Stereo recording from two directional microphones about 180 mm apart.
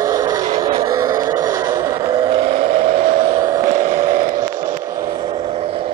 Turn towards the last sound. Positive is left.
turn(degrees=-50)  # may be behind; listen again after turning